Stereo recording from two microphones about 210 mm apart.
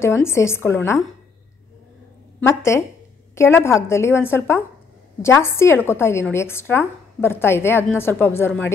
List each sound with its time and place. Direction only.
0.0 s a woman's voice: 10° left (ahead or behind)
2.4 s a woman's voice: 15° left (ahead or behind)